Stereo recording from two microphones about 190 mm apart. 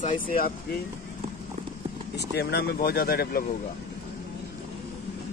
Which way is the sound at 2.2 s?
60° left (ahead or behind).